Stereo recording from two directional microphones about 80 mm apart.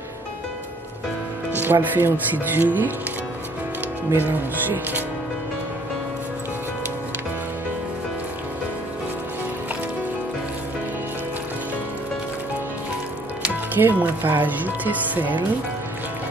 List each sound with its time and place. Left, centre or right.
1.6 s speech: right
4.3 s speech: right
13.7 s speech: right